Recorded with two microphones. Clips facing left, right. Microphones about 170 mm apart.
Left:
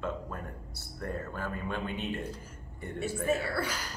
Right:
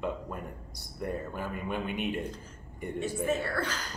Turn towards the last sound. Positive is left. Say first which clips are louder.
# right 1 dB
turn(degrees=10)  # may be behind; listen again after turning